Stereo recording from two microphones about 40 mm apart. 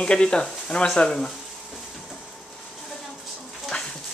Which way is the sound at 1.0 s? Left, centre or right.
Centre.